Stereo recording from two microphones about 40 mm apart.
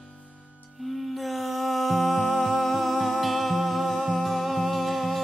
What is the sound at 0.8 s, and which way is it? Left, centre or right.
Music, centre.